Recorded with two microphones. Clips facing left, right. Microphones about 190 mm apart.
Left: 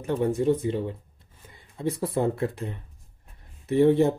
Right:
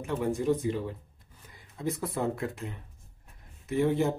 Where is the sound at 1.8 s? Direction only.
30° left (ahead or behind).